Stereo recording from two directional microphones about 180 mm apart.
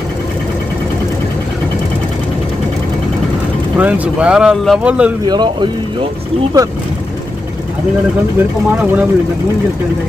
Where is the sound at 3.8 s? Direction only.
10° right (ahead or behind).